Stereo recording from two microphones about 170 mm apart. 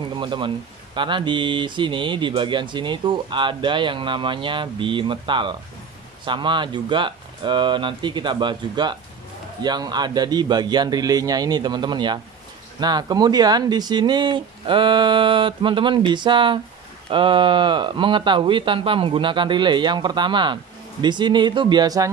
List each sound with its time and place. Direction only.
0.1 s speech: 30° right (ahead or behind)